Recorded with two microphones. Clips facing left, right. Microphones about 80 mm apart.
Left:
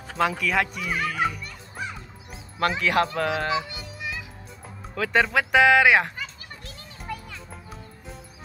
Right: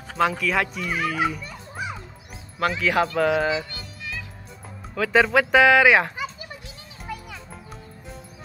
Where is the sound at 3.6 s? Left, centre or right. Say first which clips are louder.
Left 2 dB; centre.